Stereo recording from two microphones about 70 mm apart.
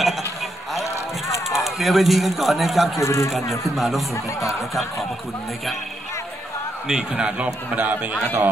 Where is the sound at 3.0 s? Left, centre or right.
Left.